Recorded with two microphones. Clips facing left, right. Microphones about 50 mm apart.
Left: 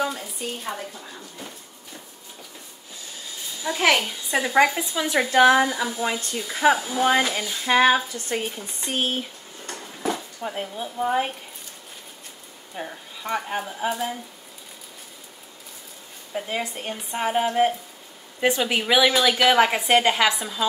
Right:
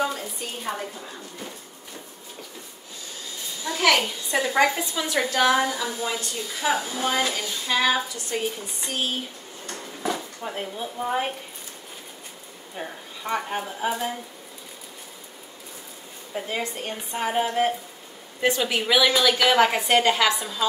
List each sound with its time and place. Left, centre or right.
0.0 s speech: centre
3.6 s a woman's voice: centre
5.6 s a woman's voice: centre
6.5 s speech: left
9.7 s a sound: centre
10.4 s speech: centre
12.7 s speech: centre
16.3 s a woman's voice: centre